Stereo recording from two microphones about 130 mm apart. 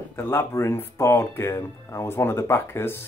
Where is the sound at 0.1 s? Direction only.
15° left (ahead or behind).